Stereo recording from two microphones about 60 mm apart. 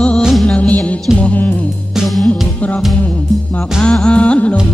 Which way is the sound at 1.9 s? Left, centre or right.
Centre.